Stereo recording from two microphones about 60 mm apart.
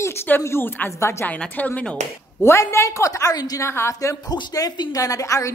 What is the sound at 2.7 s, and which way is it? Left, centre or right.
Speech, left.